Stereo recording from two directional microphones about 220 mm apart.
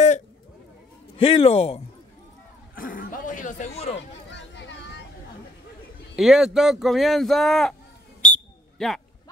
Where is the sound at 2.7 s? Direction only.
40° left (ahead or behind).